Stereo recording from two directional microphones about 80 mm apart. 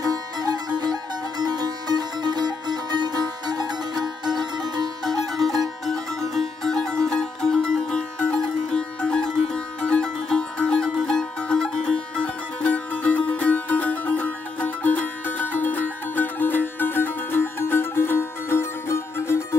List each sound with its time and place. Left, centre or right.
0.0 s music: right
5.9 s music: centre; by 19.4 s left